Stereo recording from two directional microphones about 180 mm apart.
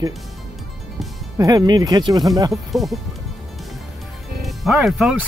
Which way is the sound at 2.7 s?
Centre (ahead or behind).